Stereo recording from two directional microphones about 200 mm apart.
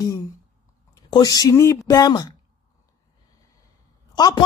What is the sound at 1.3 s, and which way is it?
Speech, 15° left (ahead or behind).